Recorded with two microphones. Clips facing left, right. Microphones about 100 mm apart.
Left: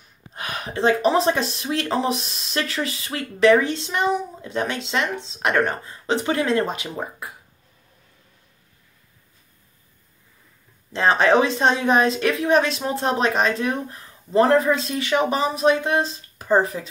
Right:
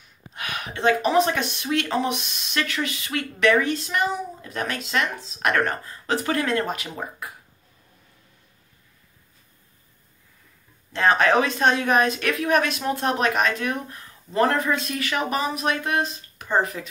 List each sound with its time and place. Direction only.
0.3 s speech: 35° left (ahead or behind)
10.9 s speech: 30° left (ahead or behind)